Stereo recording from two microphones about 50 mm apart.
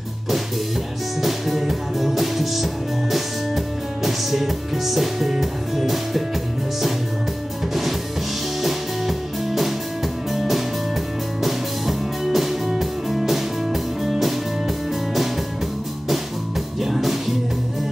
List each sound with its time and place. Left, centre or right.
1.2 s music: centre
8.5 s music: centre
16.8 s music: centre